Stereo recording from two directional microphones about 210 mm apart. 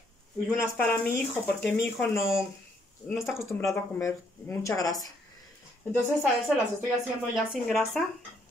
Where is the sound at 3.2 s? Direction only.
10° left (ahead or behind).